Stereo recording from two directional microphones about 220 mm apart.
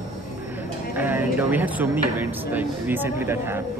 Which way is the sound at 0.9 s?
10° right (ahead or behind).